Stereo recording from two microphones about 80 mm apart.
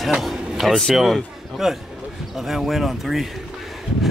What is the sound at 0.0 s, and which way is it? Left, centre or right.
A man's voice, centre.